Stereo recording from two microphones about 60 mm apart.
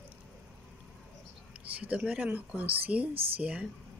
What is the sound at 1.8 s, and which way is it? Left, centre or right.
Speech, right.